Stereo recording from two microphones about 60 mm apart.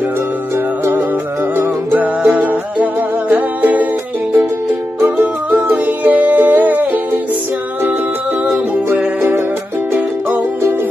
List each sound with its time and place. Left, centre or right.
1.6 s music: right
5.1 s music: right